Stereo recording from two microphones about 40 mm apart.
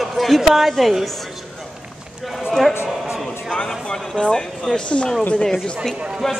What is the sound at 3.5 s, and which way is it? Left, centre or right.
Speech, centre.